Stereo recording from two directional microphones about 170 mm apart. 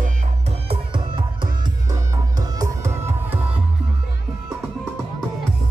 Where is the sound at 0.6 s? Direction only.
30° right (ahead or behind).